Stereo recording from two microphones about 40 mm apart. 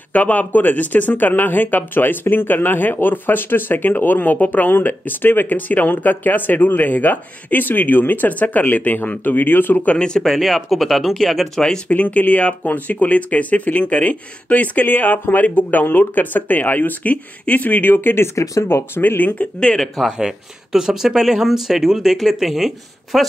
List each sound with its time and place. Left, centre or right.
0.1 s speech: left
9.9 s speech: left
10.2 s speech: centre
11.9 s speech: left
20.1 s speech: centre